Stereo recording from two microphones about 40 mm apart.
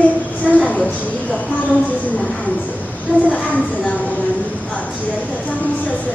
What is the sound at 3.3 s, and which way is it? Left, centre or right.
Speech, left.